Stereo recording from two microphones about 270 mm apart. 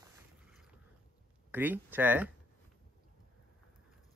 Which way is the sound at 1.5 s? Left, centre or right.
Centre.